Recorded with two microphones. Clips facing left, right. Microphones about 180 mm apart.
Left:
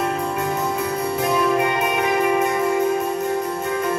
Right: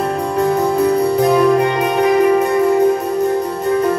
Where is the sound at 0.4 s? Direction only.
35° right (ahead or behind).